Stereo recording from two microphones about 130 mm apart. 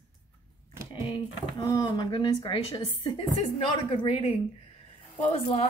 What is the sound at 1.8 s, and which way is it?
A woman's voice, 35° left (ahead or behind).